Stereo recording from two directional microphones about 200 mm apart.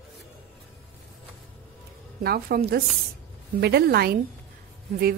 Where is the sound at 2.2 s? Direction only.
50° right (ahead or behind).